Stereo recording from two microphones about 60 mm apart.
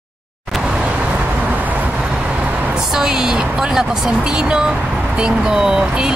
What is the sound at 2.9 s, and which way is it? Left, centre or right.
Speech, centre.